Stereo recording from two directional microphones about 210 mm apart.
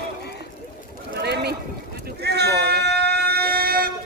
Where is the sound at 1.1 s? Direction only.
50° right (ahead or behind).